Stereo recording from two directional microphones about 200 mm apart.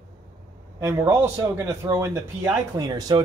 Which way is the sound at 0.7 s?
15° right (ahead or behind).